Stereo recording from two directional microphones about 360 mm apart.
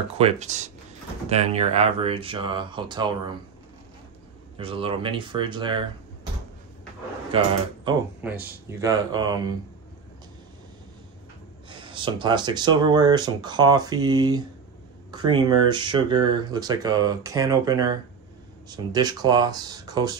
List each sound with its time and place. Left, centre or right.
0.2 s speech: centre
4.6 s speech: centre
7.3 s speech: centre
11.7 s speech: centre